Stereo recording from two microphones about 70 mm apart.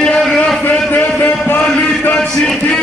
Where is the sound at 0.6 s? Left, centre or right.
Left.